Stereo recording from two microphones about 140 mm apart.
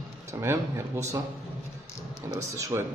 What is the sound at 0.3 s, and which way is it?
Speech, 20° right (ahead or behind).